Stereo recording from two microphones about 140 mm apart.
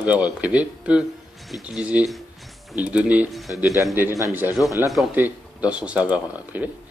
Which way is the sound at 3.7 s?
20° right (ahead or behind).